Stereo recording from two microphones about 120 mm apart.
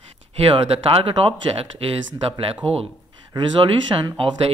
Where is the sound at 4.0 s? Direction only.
45° right (ahead or behind).